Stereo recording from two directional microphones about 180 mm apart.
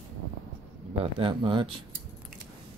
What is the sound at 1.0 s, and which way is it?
Speech, 30° right (ahead or behind).